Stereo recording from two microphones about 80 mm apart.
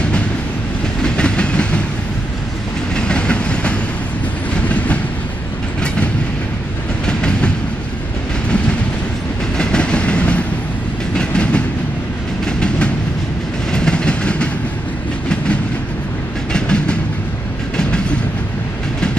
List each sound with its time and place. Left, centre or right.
1.0 s train: centre
3.0 s train: centre
7.1 s train: centre
9.6 s train: centre
16.5 s train: centre